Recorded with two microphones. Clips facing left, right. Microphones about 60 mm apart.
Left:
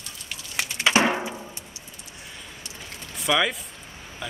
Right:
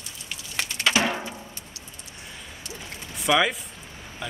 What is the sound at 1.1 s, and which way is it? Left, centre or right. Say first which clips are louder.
Music: left 3 dB; centre.